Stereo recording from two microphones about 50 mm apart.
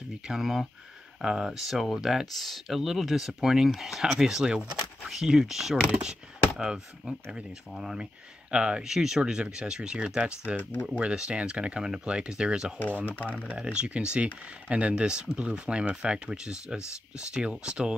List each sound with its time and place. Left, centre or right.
0.3 s speech: centre
5.8 s speech: centre
10.6 s speech: left
11.0 s speech: right
13.0 s speech: left
13.6 s speech: right